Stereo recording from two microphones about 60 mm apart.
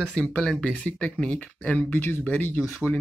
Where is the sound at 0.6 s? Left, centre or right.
Left.